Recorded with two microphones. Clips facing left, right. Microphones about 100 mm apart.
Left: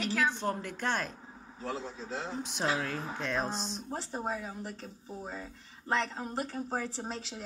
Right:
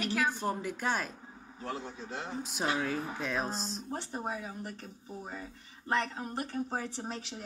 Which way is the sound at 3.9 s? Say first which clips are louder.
Left 2 dB; 25° left (ahead or behind).